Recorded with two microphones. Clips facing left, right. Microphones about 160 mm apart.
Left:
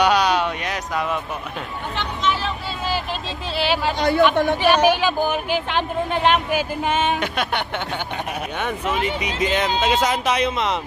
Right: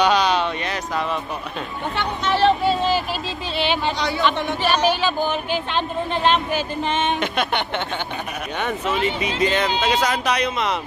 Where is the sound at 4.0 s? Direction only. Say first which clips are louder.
Left 6 dB; 50° left (ahead or behind).